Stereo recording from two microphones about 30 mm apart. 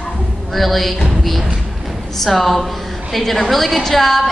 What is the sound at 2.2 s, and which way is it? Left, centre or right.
A woman's voice, centre.